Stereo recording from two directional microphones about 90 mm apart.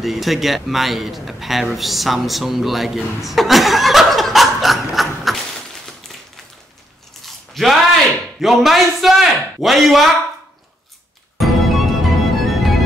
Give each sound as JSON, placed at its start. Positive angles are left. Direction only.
{"t": 0.0, "sound": "a man's voice", "side_deg": 0}
{"t": 7.2, "sound": "a sound", "side_deg": 0}
{"t": 11.3, "sound": "music", "side_deg": 0}